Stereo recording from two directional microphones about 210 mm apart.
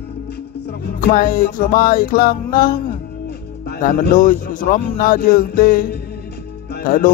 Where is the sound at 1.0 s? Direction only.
40° left (ahead or behind).